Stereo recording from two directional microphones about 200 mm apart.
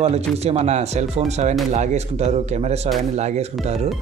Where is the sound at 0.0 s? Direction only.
35° right (ahead or behind).